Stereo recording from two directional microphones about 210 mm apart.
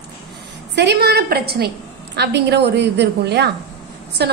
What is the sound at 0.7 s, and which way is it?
A woman's voice, 55° right (ahead or behind).